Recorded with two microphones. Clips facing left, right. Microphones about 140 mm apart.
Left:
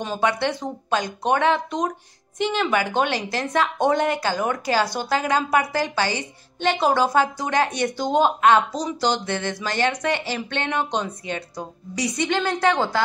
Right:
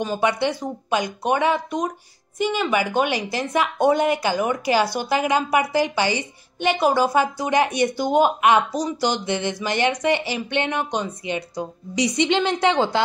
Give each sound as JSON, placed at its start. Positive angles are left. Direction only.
{"t": 0.2, "sound": "a woman's voice", "side_deg": -15}